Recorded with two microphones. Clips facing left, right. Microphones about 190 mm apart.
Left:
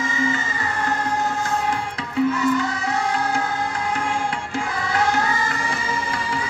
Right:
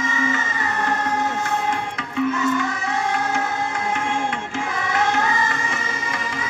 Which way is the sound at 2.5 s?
35° left (ahead or behind).